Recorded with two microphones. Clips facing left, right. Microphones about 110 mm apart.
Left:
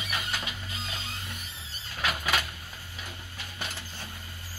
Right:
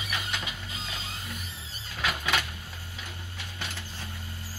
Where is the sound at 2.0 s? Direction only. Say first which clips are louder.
Even; 5° left (ahead or behind).